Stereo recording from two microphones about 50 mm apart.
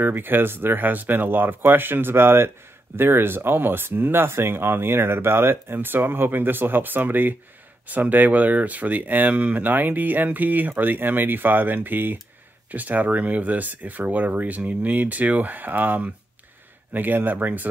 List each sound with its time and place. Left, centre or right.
0.0 s speech: right